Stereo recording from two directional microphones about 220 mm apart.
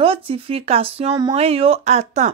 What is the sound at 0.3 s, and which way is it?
A woman's voice, 25° right (ahead or behind).